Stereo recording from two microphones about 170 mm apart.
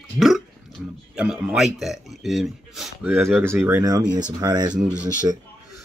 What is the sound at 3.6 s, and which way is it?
Speech, 15° right (ahead or behind).